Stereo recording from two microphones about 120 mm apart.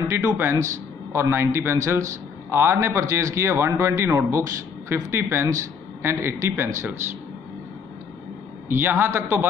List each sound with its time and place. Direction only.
0.2 s a man's voice: 15° right (ahead or behind)
8.6 s a man's voice: 20° right (ahead or behind)